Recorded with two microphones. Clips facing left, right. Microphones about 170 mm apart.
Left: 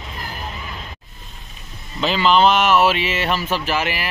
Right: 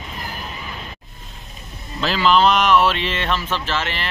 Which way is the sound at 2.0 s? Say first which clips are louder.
Left 1 dB; centre (ahead or behind).